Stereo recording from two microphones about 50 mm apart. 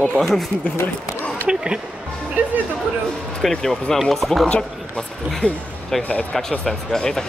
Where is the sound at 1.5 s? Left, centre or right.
Centre.